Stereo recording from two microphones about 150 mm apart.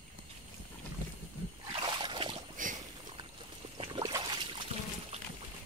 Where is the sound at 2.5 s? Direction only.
60° right (ahead or behind).